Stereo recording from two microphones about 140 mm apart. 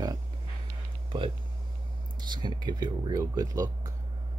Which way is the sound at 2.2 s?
30° right (ahead or behind).